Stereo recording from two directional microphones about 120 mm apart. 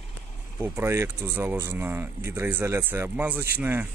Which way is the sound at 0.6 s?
20° right (ahead or behind).